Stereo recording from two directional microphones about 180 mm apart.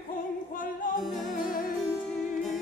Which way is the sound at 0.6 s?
50° left (ahead or behind).